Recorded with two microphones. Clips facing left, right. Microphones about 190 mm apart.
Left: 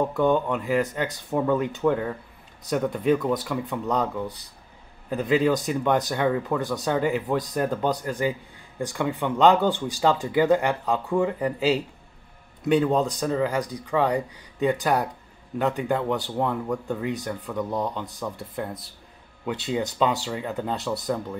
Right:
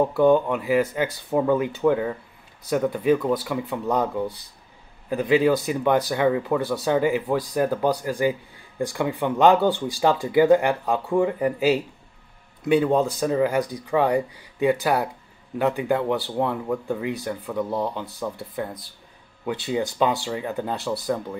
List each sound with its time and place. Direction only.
0.0 s speech: 5° right (ahead or behind)
5.1 s speech: 5° right (ahead or behind)
11.3 s speech: 15° right (ahead or behind)
12.6 s speech: 5° right (ahead or behind)